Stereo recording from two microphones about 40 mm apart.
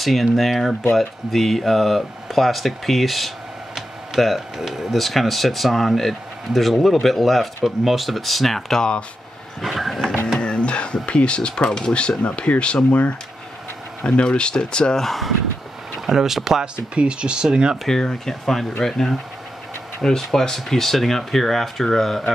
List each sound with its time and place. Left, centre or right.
0.0 s speech: centre
10.4 s speech: left
14.0 s speech: left
15.0 s speech: centre
16.1 s speech: centre
16.9 s speech: right
17.8 s speech: centre